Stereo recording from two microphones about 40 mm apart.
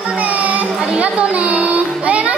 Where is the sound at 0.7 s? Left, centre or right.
Right.